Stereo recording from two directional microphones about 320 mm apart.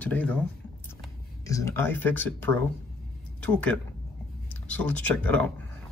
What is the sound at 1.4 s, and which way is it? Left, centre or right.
Speech, centre.